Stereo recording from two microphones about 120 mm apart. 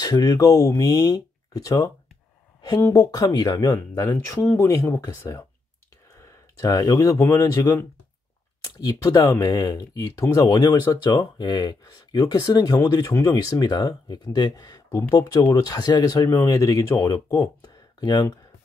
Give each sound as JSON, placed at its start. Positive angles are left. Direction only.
{"t": 0.0, "sound": "speech", "side_deg": 30}
{"t": 2.9, "sound": "speech", "side_deg": 30}
{"t": 3.6, "sound": "speech", "side_deg": 20}